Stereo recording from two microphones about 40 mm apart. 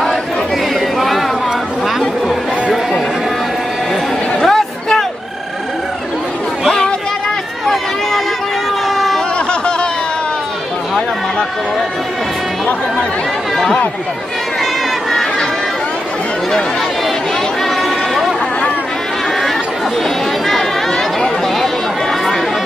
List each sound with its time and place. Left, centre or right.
0.7 s chatter: centre
2.2 s chatter: centre
4.4 s chatter: centre
7.6 s chatter: centre
8.8 s a sound: centre
9.5 s a sound: left